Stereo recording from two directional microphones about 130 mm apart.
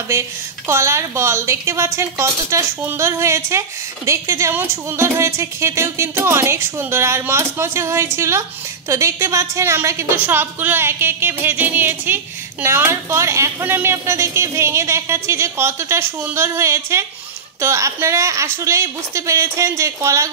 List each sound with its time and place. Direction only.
0.7 s speech: 20° right (ahead or behind)